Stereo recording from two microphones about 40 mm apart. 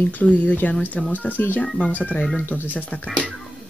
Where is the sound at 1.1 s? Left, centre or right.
Left.